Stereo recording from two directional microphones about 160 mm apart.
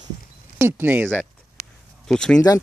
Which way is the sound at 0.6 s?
15° right (ahead or behind).